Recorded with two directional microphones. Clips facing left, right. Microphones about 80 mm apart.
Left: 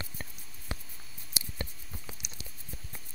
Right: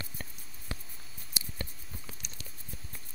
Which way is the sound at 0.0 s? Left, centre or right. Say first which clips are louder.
Left 1 dB; left.